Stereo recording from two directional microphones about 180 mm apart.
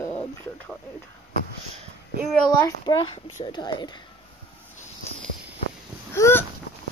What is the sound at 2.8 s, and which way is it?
Speech, 25° left (ahead or behind).